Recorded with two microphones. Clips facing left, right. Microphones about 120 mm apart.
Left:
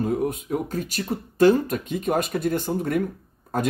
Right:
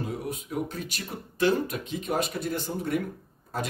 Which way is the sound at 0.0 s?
50° left (ahead or behind).